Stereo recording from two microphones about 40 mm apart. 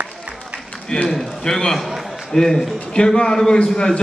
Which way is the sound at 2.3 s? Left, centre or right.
Centre.